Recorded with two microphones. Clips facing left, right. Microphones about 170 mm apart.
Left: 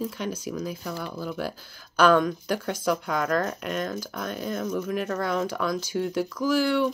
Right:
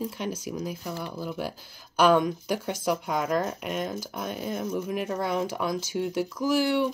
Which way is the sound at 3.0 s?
5° right (ahead or behind).